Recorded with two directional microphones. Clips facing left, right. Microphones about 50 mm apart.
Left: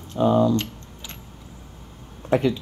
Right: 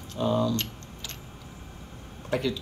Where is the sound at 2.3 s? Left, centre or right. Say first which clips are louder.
Left 7 dB; left.